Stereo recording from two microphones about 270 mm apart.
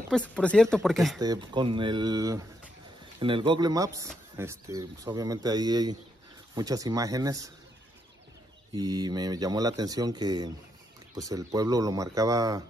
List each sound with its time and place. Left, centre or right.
0.1 s speech: centre
1.2 s speech: centre
8.7 s speech: centre